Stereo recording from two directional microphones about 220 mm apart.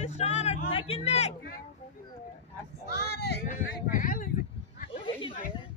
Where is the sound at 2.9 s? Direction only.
45° left (ahead or behind).